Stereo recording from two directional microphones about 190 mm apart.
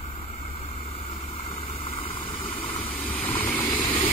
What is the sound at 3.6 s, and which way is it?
Vehicle, 25° left (ahead or behind).